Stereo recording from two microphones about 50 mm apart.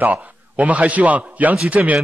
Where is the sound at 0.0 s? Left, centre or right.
Right.